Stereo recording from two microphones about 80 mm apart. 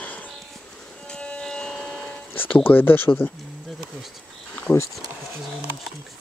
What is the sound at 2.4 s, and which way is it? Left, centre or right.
Speech, left.